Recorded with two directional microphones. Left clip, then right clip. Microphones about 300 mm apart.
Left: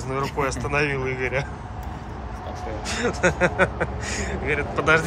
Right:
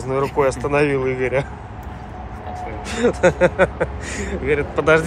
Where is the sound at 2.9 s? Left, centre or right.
Centre.